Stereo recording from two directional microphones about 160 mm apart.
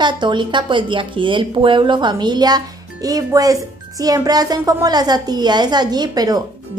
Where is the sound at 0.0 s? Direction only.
30° right (ahead or behind).